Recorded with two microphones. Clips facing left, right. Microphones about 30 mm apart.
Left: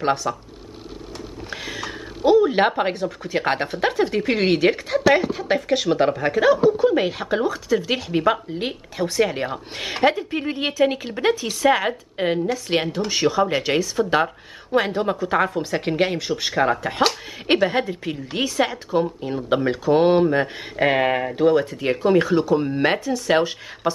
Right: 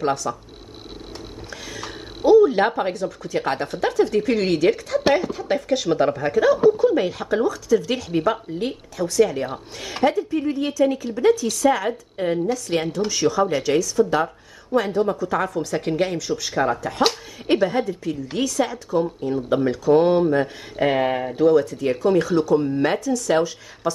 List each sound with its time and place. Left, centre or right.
0.0 s speech: left
1.5 s music: left
2.3 s a woman's voice: left
5.3 s speech: left
15.1 s speech: left